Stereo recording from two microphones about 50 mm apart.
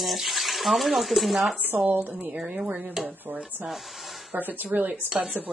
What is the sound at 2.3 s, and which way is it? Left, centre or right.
Speech, centre.